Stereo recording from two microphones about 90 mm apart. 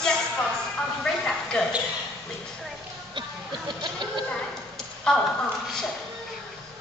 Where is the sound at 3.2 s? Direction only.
55° right (ahead or behind).